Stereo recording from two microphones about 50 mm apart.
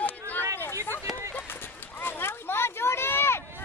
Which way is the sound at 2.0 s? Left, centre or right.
Left.